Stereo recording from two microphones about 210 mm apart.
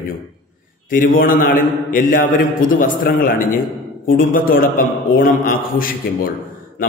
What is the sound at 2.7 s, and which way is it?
A man's voice, 40° left (ahead or behind).